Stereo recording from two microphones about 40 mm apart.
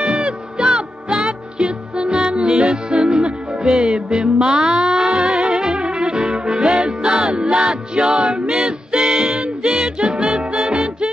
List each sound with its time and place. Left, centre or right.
0.6 s music: right
1.1 s music: centre
2.0 s music: right
9.0 s music: centre
9.3 s music: right